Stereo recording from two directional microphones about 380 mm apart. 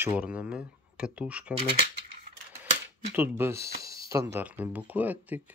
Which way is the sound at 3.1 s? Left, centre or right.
Centre.